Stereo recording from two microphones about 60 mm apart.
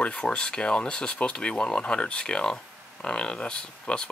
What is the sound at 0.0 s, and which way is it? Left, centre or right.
Speech, centre.